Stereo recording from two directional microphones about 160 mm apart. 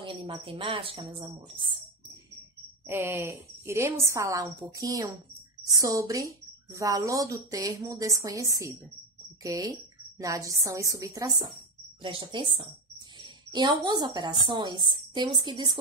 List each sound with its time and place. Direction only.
0.0 s speech: 35° right (ahead or behind)
2.9 s a woman's voice: 15° right (ahead or behind)
12.0 s speech: 35° right (ahead or behind)